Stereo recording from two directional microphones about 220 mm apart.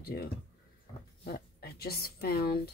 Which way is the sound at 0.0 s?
45° left (ahead or behind).